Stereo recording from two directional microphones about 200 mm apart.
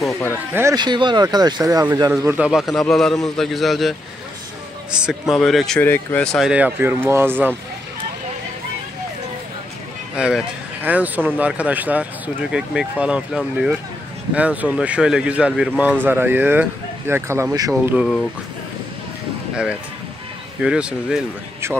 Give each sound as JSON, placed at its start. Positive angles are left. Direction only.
{"t": 0.0, "sound": "music", "side_deg": 10}
{"t": 0.5, "sound": "speech", "side_deg": -15}
{"t": 4.9, "sound": "speech", "side_deg": -5}
{"t": 10.1, "sound": "speech", "side_deg": -5}
{"t": 17.9, "sound": "speech", "side_deg": 5}
{"t": 19.5, "sound": "speech", "side_deg": -5}